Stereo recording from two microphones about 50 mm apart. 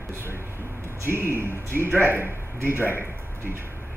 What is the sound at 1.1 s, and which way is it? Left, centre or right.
Speech, right.